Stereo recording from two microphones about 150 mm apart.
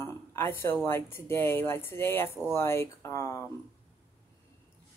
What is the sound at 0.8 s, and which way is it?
Speech, 15° left (ahead or behind).